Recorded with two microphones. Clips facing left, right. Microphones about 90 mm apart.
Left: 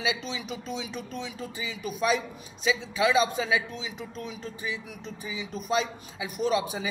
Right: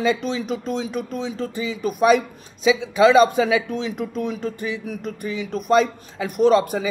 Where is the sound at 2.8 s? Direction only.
80° right.